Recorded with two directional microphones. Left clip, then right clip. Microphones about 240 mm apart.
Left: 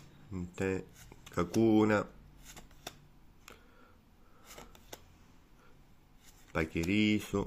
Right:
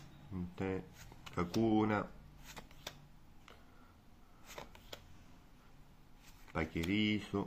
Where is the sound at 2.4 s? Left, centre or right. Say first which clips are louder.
Left 1 dB; centre.